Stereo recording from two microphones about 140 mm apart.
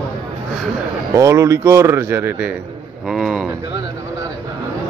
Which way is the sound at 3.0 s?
Centre (ahead or behind).